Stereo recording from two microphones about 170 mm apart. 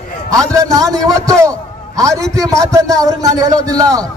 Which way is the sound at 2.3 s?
20° right (ahead or behind).